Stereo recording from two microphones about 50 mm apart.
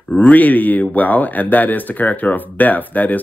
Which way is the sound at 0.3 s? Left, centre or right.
Left.